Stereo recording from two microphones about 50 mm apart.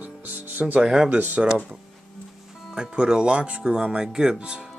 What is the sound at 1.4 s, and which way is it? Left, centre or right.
Speech, right.